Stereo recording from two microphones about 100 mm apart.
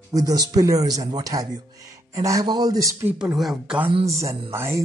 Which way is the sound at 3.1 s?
5° right (ahead or behind).